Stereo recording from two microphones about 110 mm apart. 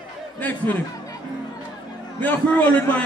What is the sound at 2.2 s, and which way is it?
Speech, 15° left (ahead or behind).